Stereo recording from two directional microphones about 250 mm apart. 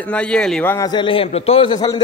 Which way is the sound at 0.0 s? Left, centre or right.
Centre.